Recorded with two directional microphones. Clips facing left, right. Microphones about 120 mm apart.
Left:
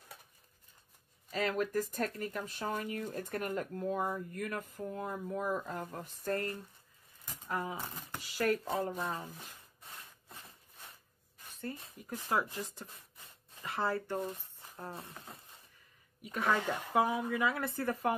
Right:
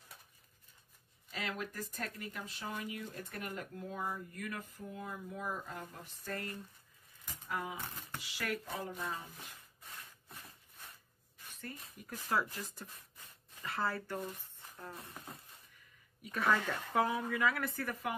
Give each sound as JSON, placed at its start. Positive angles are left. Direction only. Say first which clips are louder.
{"t": 1.3, "sound": "speech", "louder": "left 9 dB", "side_deg": 45}
{"t": 11.5, "sound": "speech", "louder": "left 6 dB", "side_deg": 30}